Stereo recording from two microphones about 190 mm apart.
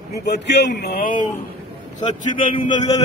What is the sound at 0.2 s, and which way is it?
A man's voice, 60° left (ahead or behind).